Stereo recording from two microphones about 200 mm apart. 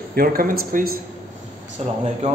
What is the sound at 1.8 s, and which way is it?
Speech, 30° right (ahead or behind).